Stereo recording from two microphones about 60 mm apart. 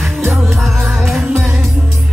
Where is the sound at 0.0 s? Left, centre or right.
Centre.